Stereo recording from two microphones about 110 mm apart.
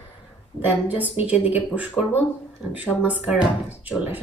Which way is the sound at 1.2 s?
15° right (ahead or behind).